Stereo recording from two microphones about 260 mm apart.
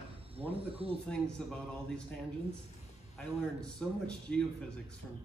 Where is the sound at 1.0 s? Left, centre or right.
Centre.